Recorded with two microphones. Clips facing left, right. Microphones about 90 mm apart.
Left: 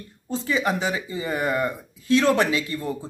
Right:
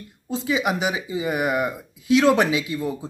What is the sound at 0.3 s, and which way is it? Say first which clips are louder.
Speech: right 1 dB; 15° right (ahead or behind).